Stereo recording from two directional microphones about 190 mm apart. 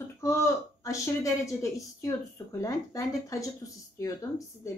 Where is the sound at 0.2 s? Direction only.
15° left (ahead or behind).